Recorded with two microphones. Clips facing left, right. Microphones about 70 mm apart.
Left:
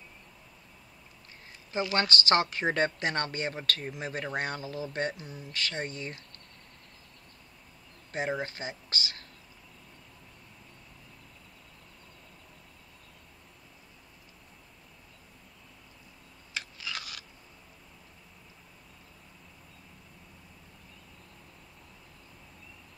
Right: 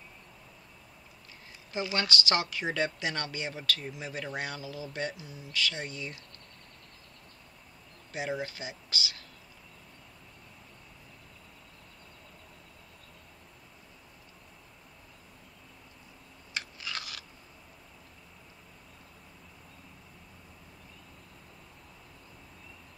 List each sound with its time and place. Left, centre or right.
2.0 s speech: left
8.1 s speech: left
16.5 s chewing: centre